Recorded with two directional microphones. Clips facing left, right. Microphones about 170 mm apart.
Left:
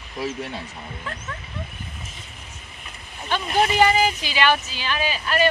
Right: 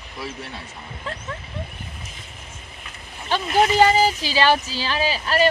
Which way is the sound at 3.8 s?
35° right (ahead or behind).